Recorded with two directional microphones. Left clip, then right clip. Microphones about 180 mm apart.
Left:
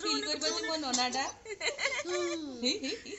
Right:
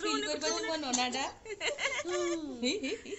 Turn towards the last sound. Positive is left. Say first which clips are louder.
# left 1 dB
turn(degrees=-10)  # may be behind; listen again after turning